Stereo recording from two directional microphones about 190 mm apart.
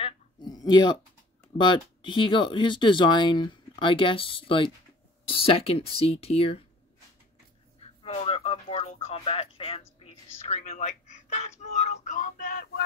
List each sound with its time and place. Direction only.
0.0 s a sound: 20° left (ahead or behind)
1.6 s speech: 25° left (ahead or behind)
7.8 s speech: 30° left (ahead or behind)